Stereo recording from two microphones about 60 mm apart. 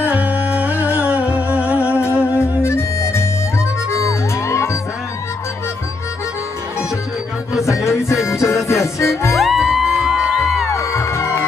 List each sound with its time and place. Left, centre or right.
0.0 s music: right
2.6 s music: left
7.6 s music: left
9.3 s music: centre
10.8 s music: left